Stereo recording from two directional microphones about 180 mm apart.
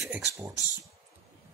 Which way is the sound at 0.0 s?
10° right (ahead or behind).